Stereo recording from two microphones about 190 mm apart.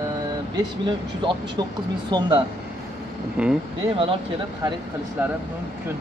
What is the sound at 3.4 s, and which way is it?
Speech, 5° right (ahead or behind).